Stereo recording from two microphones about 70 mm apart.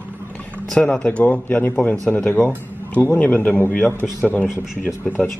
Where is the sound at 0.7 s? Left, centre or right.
Centre.